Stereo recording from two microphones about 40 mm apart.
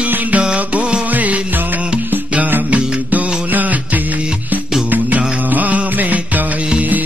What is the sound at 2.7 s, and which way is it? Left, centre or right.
Music, right.